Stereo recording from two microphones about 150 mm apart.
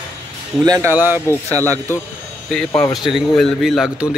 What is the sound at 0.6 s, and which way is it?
Speech, 25° right (ahead or behind).